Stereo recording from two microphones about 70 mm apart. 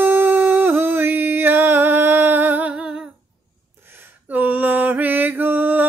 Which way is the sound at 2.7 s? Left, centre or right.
Centre.